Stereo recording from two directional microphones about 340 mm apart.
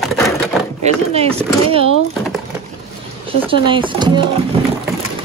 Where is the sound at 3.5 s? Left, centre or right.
Centre.